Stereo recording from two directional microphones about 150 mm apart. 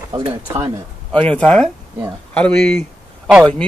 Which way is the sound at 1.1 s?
10° left (ahead or behind).